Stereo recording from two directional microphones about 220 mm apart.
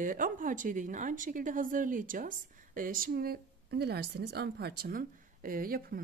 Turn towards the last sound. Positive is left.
turn(degrees=-40)  # may be behind; listen again after turning